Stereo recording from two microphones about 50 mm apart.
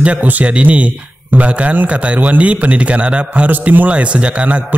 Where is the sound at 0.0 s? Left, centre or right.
Right.